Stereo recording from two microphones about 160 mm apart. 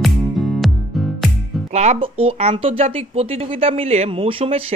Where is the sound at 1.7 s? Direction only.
45° right (ahead or behind).